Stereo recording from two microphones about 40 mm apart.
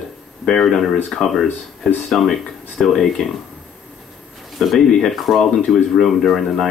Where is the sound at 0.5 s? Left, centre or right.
Centre.